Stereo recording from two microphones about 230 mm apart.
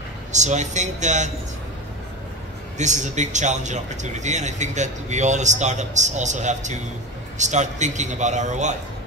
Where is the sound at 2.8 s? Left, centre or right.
Right.